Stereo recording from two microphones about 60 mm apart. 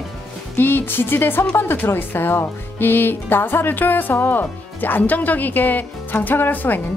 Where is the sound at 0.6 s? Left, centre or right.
Left.